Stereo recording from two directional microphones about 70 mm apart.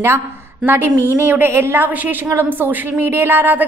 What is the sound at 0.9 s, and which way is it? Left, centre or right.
Speech, left.